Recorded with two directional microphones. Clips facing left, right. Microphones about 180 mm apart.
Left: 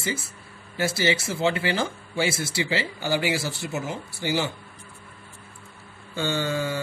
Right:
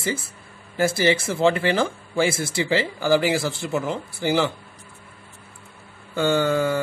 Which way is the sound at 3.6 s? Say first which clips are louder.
Right 5 dB; 55° right (ahead or behind).